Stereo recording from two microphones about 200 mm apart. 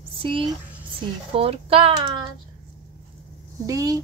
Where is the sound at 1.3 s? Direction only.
30° right (ahead or behind).